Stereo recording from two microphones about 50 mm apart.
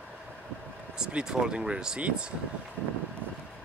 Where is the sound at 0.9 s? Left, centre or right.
Centre.